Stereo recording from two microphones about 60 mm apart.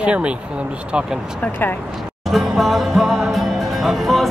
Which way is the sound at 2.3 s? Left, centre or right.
Centre.